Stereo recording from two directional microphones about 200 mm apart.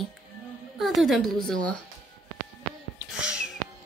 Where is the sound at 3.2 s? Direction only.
5° right (ahead or behind).